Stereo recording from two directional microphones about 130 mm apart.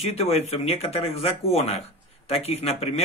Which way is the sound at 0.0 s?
50° left (ahead or behind).